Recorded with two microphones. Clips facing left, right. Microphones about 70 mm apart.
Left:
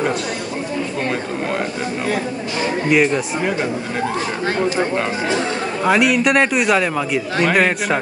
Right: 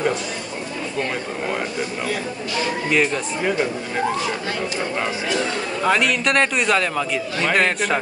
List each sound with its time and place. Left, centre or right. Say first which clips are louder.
2.9 s a man's voice: left 4 dB; centre
5.9 s a man's voice: left 4 dB; centre